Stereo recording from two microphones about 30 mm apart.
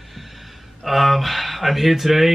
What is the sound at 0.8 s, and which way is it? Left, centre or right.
Speech, centre.